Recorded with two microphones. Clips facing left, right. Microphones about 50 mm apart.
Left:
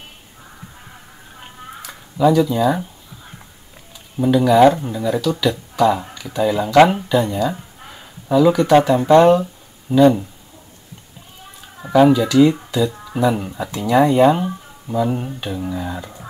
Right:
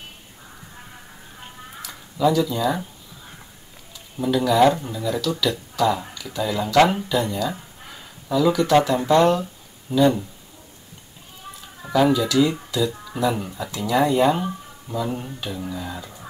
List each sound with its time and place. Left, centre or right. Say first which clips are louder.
1.8 s speech: left 5 dB; centre
4.2 s speech: left 5 dB; centre
11.8 s speech: left 6 dB; centre